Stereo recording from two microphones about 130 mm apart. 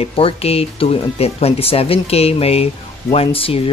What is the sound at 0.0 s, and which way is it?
Speech, 50° left (ahead or behind).